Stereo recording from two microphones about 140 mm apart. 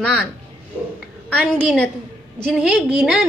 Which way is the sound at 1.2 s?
10° left (ahead or behind).